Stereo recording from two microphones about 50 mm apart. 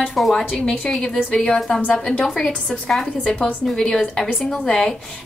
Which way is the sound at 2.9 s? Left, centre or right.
Centre.